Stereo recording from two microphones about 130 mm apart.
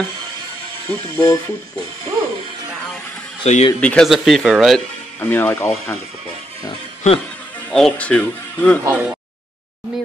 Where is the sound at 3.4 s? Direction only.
55° left (ahead or behind).